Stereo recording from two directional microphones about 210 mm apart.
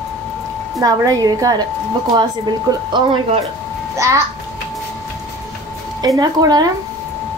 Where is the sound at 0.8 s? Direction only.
15° right (ahead or behind).